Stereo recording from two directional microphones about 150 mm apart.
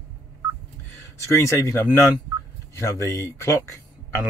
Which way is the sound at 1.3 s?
20° left (ahead or behind).